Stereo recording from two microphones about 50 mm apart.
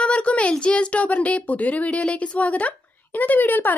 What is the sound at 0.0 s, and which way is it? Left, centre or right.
A woman's voice, left.